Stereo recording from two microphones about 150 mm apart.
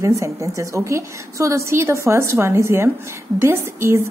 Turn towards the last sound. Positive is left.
turn(degrees=-20)  # may be behind; listen again after turning